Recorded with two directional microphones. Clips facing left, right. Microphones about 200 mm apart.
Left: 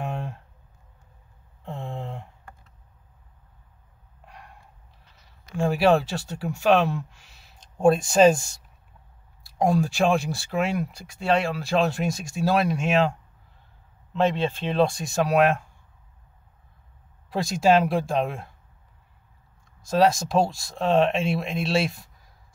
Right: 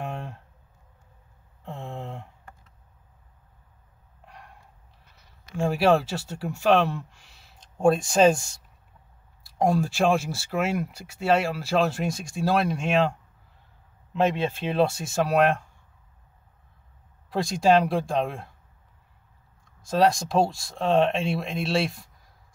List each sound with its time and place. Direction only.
0.0 s a sound: centre (ahead or behind)
1.6 s a sound: centre (ahead or behind)
5.6 s speech: centre (ahead or behind)
14.1 s speech: 10° right (ahead or behind)
17.3 s speech: 5° left (ahead or behind)
19.8 s speech: centre (ahead or behind)